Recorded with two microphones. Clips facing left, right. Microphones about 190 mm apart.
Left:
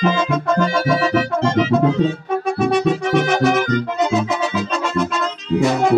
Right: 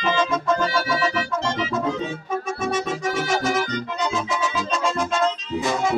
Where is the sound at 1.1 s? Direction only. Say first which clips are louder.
Left 8 dB; 60° left (ahead or behind).